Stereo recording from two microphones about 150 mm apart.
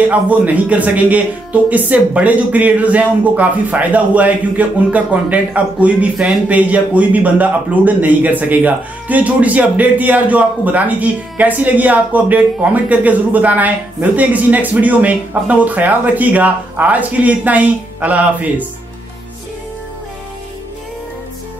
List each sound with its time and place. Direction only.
0.1 s speech: 10° right (ahead or behind)